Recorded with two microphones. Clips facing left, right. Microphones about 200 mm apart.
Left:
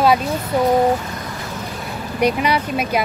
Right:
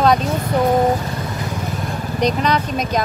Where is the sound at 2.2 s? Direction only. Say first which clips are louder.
Left 1 dB; 10° left (ahead or behind).